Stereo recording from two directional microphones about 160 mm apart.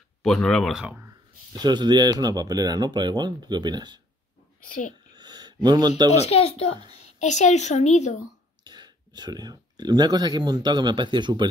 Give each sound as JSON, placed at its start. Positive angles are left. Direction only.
{"t": 0.2, "sound": "speech", "side_deg": 5}
{"t": 1.5, "sound": "speech", "side_deg": -25}
{"t": 4.6, "sound": "speech", "side_deg": 55}
{"t": 5.1, "sound": "a sound", "side_deg": -25}
{"t": 6.1, "sound": "a woman's voice", "side_deg": 40}
{"t": 8.6, "sound": "speech", "side_deg": -25}